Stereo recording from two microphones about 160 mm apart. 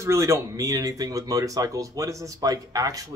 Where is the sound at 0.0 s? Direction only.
20° right (ahead or behind).